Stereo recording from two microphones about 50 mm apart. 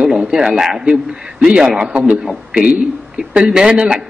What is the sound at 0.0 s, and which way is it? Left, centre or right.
A man's voice, centre.